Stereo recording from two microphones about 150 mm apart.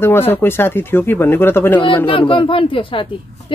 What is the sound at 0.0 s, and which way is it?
Speech, 15° left (ahead or behind).